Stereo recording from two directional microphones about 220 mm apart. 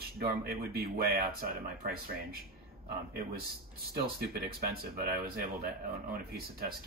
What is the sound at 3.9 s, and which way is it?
Speech, 45° right (ahead or behind).